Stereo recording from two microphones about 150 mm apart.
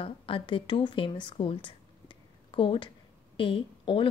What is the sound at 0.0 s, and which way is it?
Speech, 35° left (ahead or behind).